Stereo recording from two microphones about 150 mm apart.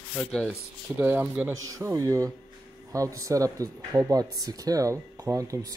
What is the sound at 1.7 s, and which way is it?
Speech, 25° right (ahead or behind).